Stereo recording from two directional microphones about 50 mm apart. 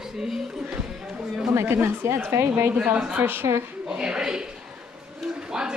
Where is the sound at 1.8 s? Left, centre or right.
Right.